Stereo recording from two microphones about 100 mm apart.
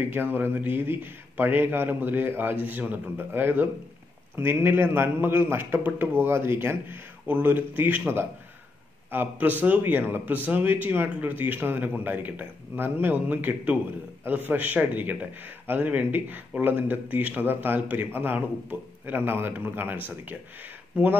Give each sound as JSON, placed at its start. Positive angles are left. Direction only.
{"t": 0.1, "sound": "speech", "side_deg": -20}
{"t": 9.1, "sound": "a man's voice", "side_deg": -20}